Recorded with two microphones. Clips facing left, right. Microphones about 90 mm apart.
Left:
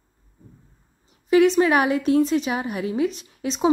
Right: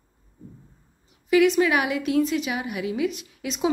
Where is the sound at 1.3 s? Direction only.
35° left (ahead or behind).